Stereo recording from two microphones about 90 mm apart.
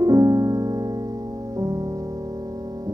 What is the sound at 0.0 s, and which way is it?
Music, 40° right (ahead or behind).